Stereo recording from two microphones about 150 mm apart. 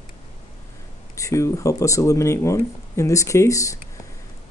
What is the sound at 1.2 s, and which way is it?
Speech, 20° left (ahead or behind).